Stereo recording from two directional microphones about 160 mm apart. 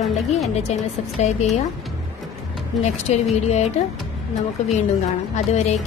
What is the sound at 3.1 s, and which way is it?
Speech, 45° left (ahead or behind).